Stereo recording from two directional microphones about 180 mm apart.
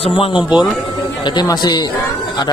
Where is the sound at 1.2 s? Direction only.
25° left (ahead or behind).